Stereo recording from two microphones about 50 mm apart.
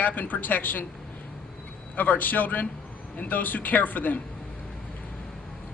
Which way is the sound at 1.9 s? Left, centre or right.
Left.